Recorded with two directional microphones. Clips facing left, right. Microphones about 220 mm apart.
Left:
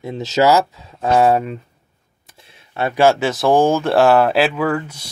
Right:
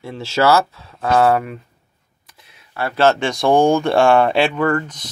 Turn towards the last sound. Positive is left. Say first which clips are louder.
# right 1 dB
turn(degrees=5)  # may be behind; listen again after turning